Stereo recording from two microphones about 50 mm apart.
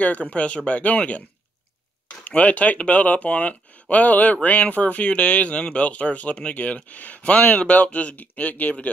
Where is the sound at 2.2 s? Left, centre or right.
Left.